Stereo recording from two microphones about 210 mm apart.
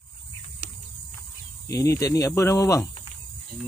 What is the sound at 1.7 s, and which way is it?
Speech, 15° left (ahead or behind).